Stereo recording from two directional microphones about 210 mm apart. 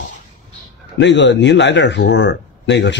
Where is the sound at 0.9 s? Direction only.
55° left (ahead or behind).